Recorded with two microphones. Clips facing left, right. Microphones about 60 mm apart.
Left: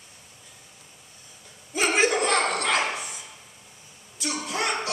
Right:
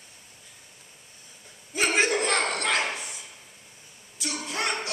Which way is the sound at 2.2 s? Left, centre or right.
Left.